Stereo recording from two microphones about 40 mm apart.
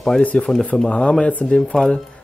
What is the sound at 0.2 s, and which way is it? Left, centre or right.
Speech, left.